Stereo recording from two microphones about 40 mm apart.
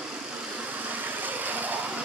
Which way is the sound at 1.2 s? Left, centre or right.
Right.